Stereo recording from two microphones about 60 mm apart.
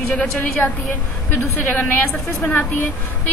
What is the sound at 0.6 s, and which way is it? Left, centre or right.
A woman's voice, left.